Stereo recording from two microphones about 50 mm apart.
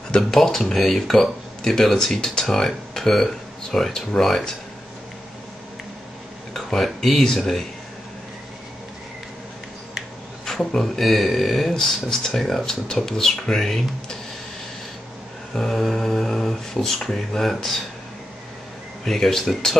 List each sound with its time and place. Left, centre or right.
0.3 s speech: centre
6.5 s speech: centre
10.4 s speech: centre
15.5 s speech: centre
19.0 s speech: centre